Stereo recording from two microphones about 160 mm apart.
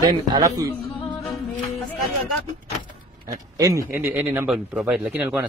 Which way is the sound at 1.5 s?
10° left (ahead or behind).